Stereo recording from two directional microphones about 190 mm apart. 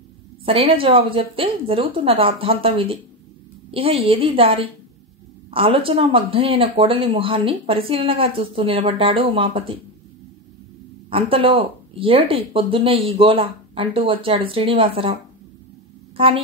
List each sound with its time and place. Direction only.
0.5 s speech: 30° right (ahead or behind)
11.1 s speech: 30° right (ahead or behind)